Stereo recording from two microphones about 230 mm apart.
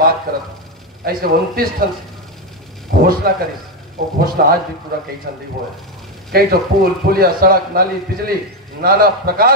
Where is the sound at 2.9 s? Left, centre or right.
Right.